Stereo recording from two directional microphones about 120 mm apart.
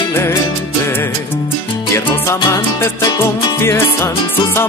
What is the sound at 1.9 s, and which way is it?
Music, 20° left (ahead or behind).